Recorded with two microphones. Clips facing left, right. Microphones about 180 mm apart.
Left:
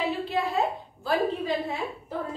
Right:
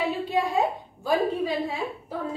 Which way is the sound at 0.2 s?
15° right (ahead or behind).